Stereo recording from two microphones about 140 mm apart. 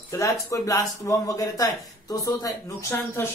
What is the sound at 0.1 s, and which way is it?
Speech, 20° left (ahead or behind).